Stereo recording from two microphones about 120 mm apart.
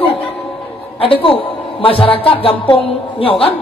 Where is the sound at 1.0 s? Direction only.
50° left (ahead or behind).